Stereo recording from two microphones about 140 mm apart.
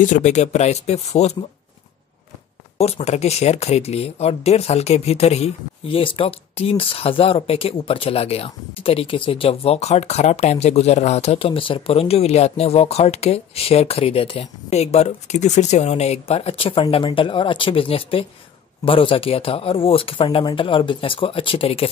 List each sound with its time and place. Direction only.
0.0 s speech: 60° left (ahead or behind)
2.8 s speech: 45° left (ahead or behind)